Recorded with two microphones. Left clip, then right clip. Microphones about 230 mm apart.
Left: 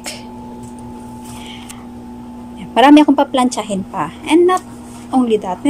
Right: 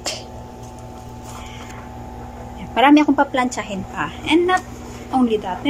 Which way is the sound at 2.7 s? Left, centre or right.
Centre.